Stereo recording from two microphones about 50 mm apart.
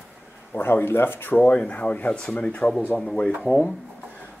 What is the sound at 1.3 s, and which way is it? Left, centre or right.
Speech, left.